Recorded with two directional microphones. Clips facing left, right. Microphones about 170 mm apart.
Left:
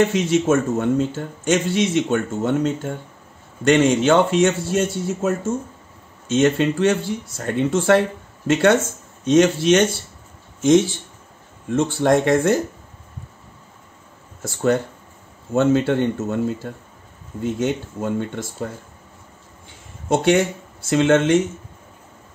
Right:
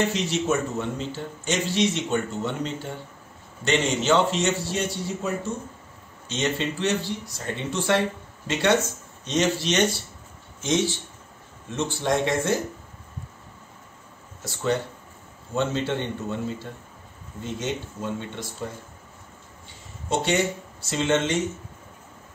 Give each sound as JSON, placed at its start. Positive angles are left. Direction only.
{"t": 0.0, "sound": "speech", "side_deg": 50}
{"t": 11.7, "sound": "speech", "side_deg": 55}
{"t": 15.5, "sound": "speech", "side_deg": 50}
{"t": 20.1, "sound": "speech", "side_deg": 55}